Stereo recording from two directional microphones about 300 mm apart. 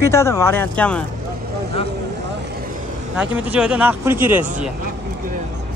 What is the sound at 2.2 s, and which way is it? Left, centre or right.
Vehicle, right.